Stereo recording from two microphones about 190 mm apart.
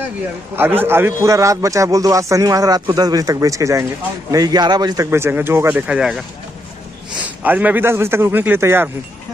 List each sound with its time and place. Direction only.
0.6 s a man's voice: 10° right (ahead or behind)
7.4 s a man's voice: 10° right (ahead or behind)